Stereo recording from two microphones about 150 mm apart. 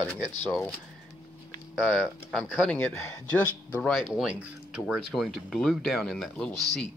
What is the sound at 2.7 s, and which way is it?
Speech, 15° left (ahead or behind).